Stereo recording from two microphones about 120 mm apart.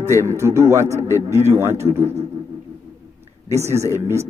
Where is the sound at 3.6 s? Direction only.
25° right (ahead or behind).